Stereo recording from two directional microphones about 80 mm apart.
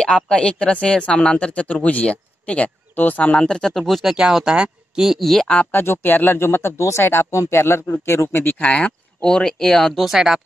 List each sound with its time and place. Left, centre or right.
0.0 s speech: centre
5.5 s speech: left; by 10.4 s centre